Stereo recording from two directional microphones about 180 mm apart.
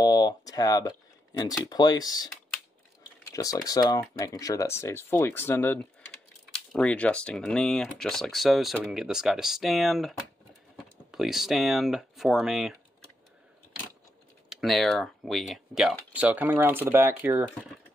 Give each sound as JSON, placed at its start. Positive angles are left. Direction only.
{"t": 0.0, "sound": "speech", "side_deg": 20}
{"t": 3.3, "sound": "speech", "side_deg": 20}
{"t": 14.5, "sound": "speech", "side_deg": 0}